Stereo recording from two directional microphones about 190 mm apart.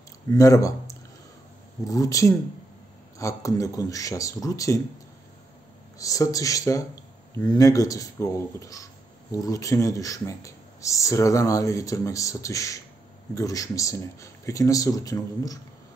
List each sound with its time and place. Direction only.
0.3 s speech: 15° left (ahead or behind)
5.9 s speech: 15° left (ahead or behind)